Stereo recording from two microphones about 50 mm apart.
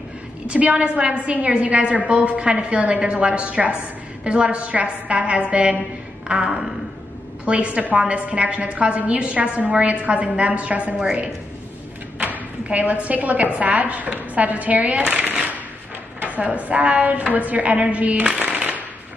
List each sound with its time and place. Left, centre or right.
0.5 s a woman's voice: right
6.2 s a woman's voice: centre
7.4 s a woman's voice: right
12.6 s a woman's voice: right
16.3 s a woman's voice: right
18.5 s a sound: right